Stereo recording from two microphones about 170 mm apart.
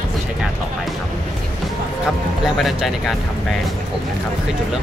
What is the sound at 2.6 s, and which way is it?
Speech, centre (ahead or behind).